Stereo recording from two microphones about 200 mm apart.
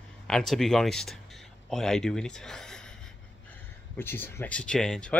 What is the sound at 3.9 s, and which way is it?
Speech, 10° left (ahead or behind).